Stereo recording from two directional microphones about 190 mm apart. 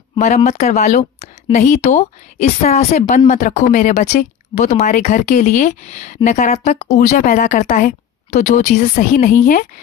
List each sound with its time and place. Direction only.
0.1 s speech: 35° left (ahead or behind)